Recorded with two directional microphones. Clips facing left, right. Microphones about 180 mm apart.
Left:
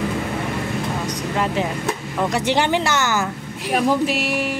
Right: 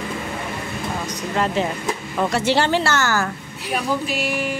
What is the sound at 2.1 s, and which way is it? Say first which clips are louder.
A woman's voice: right 1 dB; 15° left (ahead or behind).